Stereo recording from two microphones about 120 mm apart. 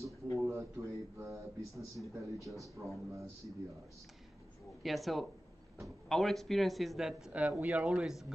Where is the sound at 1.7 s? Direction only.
25° right (ahead or behind).